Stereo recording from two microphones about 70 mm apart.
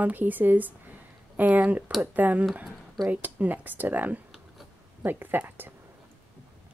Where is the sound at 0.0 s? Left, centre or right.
Right.